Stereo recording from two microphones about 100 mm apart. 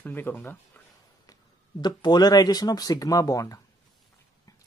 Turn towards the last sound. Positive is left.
turn(degrees=35)  # may be behind; listen again after turning